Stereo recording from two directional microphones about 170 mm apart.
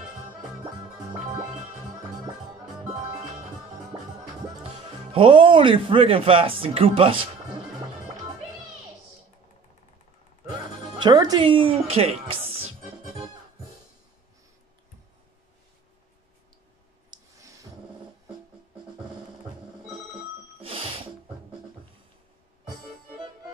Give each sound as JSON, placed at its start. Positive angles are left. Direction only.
{"t": 2.9, "sound": "music", "side_deg": -40}
{"t": 5.1, "sound": "speech", "side_deg": -30}
{"t": 11.0, "sound": "speech", "side_deg": -25}
{"t": 17.1, "sound": "a sound", "side_deg": -20}
{"t": 20.6, "sound": "music", "side_deg": -30}